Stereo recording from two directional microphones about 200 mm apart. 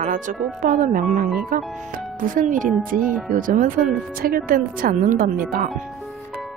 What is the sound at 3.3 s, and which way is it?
Speech, 40° right (ahead or behind).